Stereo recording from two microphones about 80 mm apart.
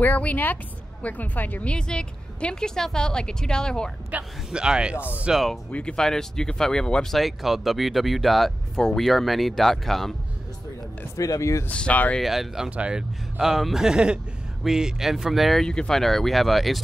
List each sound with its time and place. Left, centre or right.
0.0 s a woman's voice: left
4.1 s speech: centre
5.3 s speech: centre
5.7 s speech: centre
11.1 s speech: left
11.7 s a woman's voice: centre
12.2 s speech: centre
12.6 s speech: centre